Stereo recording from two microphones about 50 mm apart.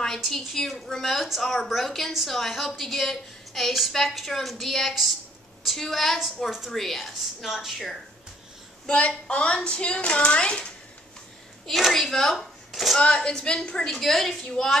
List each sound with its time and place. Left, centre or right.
0.3 s a woman's voice: centre
8.8 s a sound: left
11.6 s a woman's voice: centre
13.0 s a woman's voice: centre